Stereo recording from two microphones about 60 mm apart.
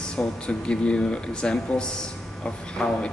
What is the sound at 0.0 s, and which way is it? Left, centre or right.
Speech, centre.